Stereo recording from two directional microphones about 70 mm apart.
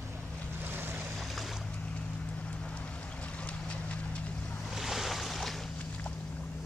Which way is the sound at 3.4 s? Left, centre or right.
Centre.